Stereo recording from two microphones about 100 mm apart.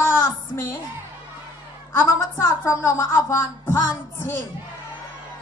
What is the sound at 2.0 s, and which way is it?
A man's voice, 25° left (ahead or behind).